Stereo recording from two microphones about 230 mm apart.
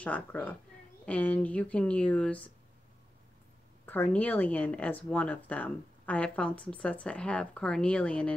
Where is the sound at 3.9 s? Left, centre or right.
Centre.